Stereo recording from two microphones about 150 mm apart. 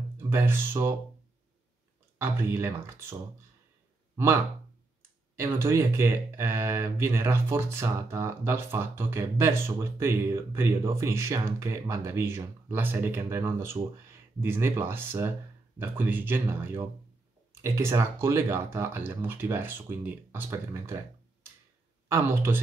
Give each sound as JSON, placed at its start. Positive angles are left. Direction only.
{"t": 0.2, "sound": "speech", "side_deg": -15}
{"t": 2.1, "sound": "speech", "side_deg": -15}
{"t": 5.3, "sound": "speech", "side_deg": -15}